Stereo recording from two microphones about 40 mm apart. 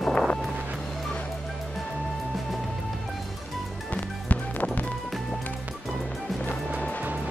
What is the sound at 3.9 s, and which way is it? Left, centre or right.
Music, left.